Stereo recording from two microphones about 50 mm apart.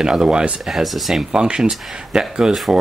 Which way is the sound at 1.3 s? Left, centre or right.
Centre.